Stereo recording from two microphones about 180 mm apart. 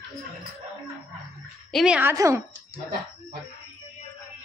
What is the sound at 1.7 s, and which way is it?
Speech, 5° right (ahead or behind).